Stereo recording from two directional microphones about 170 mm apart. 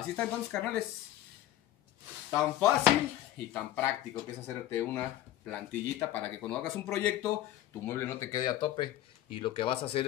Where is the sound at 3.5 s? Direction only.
15° left (ahead or behind).